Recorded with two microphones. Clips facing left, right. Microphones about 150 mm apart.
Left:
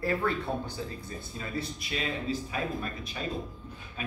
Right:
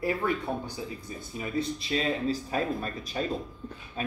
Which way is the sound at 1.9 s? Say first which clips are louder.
Right 4 dB; 40° right (ahead or behind).